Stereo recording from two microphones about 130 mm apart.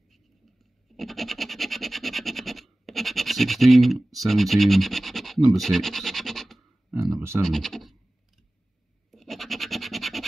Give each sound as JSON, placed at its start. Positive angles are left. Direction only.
{"t": 0.9, "sound": "scratch", "side_deg": 0}
{"t": 4.3, "sound": "speech", "side_deg": 0}
{"t": 5.5, "sound": "scratch", "side_deg": 0}
{"t": 6.9, "sound": "a sound", "side_deg": -20}
{"t": 7.4, "sound": "speech", "side_deg": 0}
{"t": 9.1, "sound": "scratch", "side_deg": 0}